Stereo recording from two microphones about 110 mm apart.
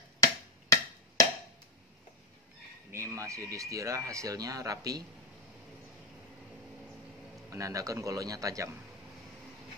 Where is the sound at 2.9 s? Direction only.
30° right (ahead or behind).